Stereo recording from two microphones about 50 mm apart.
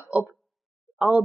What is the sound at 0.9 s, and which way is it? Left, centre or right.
Speech, right.